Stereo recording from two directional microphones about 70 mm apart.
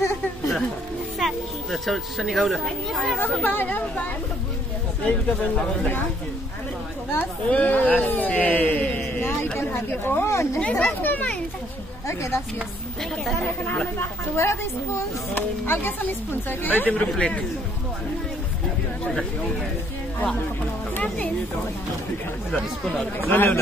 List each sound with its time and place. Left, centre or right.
1.2 s speech: centre
3.4 s speech: left
7.4 s speech: left
10.2 s speech: left
10.6 s speech: centre
12.1 s speech: left
13.7 s speech: left
14.3 s speech: left; by 17.5 s centre
23.1 s speech: left